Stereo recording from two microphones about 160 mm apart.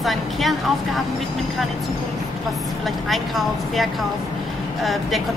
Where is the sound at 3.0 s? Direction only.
Centre (ahead or behind).